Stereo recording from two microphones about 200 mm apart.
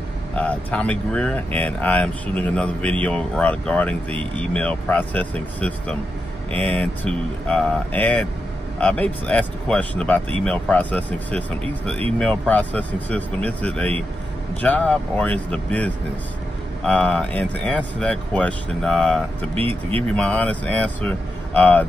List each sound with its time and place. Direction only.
0.4 s speech: 5° left (ahead or behind)
19.5 s speech: 30° right (ahead or behind)
20.2 s speech: 5° left (ahead or behind)